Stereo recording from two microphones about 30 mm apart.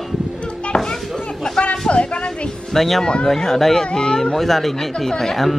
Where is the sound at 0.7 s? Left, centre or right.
Left.